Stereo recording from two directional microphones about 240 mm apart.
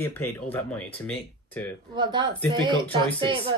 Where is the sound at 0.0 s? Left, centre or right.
Centre.